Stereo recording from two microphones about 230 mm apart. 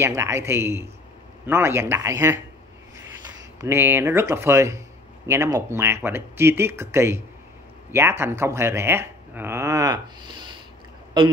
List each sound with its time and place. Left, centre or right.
0.0 s speech: centre
3.6 s a man's voice: centre